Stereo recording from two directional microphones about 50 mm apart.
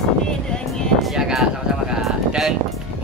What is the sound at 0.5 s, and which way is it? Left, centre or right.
Speech, centre.